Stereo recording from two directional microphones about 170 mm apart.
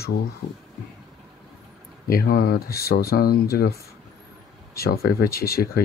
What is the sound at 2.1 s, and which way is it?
Speech, 60° left (ahead or behind).